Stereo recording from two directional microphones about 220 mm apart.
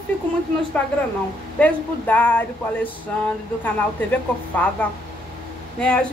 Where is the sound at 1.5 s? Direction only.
5° left (ahead or behind).